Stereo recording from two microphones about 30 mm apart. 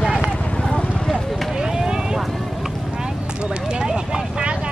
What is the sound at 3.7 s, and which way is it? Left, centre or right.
Vehicle, right.